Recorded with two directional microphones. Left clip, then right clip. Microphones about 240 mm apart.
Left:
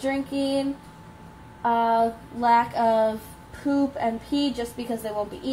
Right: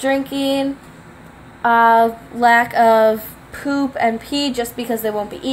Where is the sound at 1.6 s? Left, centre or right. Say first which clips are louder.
Right 9 dB; right.